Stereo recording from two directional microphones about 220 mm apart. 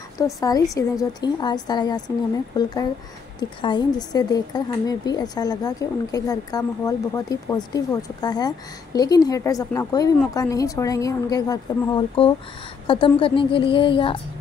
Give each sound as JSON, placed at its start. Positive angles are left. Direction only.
{"t": 0.2, "sound": "a woman's voice", "side_deg": 15}